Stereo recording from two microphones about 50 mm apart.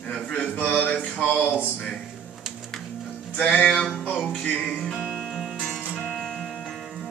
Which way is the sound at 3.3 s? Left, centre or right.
Left.